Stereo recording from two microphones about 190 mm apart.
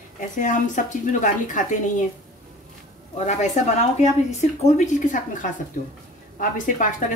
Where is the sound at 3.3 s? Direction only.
35° left (ahead or behind).